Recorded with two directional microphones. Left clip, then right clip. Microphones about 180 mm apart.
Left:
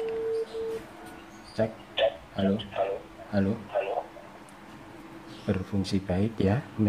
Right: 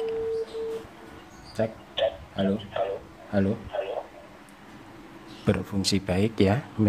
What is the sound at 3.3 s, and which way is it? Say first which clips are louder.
Speech: right 3 dB; 20° right (ahead or behind).